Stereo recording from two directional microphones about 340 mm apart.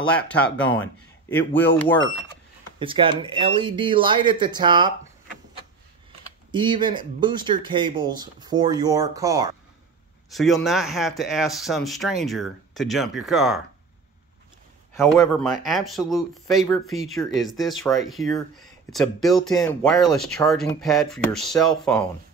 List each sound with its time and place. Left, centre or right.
1.4 s speech: left
2.8 s speech: centre
6.5 s speech: centre
15.0 s speech: centre